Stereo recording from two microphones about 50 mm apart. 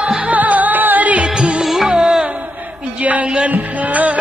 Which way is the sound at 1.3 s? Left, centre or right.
Right.